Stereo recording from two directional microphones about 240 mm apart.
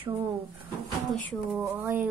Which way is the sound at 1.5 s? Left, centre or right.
Centre.